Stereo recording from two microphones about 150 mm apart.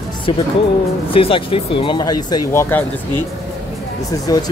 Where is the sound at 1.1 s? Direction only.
35° left (ahead or behind); by 2.8 s 20° left (ahead or behind).